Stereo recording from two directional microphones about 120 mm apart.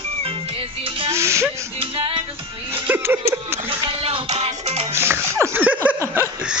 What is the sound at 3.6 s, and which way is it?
Music, 55° right (ahead or behind).